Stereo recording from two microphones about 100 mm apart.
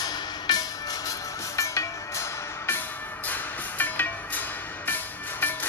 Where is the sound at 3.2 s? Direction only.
20° left (ahead or behind).